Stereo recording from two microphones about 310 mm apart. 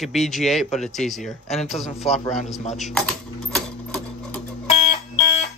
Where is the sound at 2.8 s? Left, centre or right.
Centre.